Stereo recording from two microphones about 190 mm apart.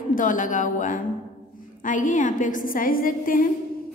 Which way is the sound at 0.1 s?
45° left (ahead or behind).